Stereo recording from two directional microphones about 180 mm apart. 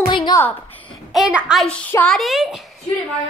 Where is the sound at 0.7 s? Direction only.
5° left (ahead or behind).